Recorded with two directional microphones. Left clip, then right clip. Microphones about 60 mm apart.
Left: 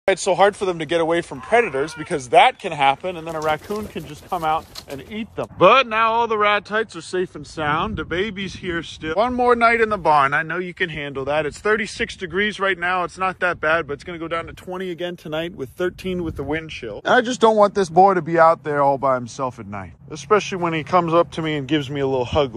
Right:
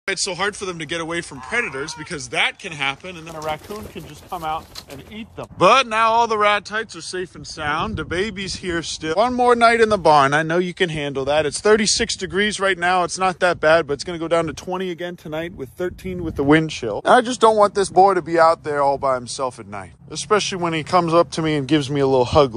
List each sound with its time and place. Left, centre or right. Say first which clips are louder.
0.0 s speech: left 7 dB; centre
1.6 s speech: left 4 dB; centre
3.3 s speech: left 4 dB; centre
5.6 s speech: even; right
6.7 s speech: left 3 dB; centre
7.9 s speech: even; right
9.8 s speech: right 2 dB; right
11.2 s speech: right 3 dB; right
11.7 s speech: right 6 dB; right
12.8 s speech: right 3 dB; right
15.0 s speech: left 1 dB; right
17.0 s speech: right 2 dB; right
17.4 s speech: even; centre
20.2 s speech: left 1 dB; centre; by 22.5 s right